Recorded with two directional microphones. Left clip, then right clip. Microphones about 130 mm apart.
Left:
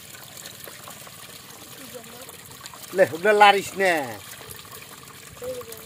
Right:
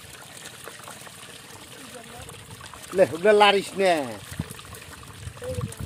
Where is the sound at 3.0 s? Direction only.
90° right.